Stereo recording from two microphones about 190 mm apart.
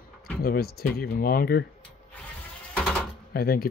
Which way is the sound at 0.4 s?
55° left (ahead or behind).